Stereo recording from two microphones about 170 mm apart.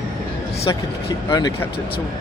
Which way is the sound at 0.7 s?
25° left (ahead or behind).